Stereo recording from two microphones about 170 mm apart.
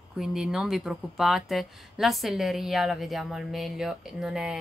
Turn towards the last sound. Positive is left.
turn(degrees=-5)  # may be behind; listen again after turning